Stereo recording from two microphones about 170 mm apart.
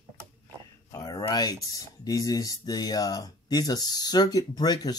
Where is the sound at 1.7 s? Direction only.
20° left (ahead or behind).